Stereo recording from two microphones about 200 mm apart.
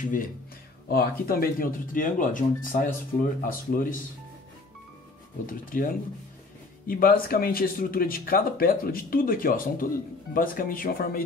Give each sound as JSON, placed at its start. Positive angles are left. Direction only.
{"t": 0.0, "sound": "speech", "side_deg": 40}
{"t": 5.5, "sound": "speech", "side_deg": 45}